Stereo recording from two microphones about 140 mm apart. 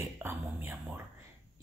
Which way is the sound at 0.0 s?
15° right (ahead or behind).